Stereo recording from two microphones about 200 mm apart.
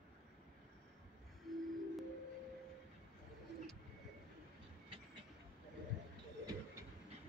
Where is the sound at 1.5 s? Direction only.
Centre (ahead or behind).